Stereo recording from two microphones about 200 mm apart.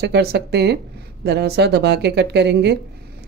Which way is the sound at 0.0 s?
55° right (ahead or behind).